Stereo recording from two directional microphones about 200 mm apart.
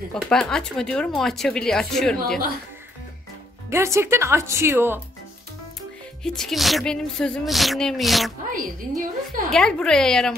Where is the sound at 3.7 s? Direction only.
15° right (ahead or behind).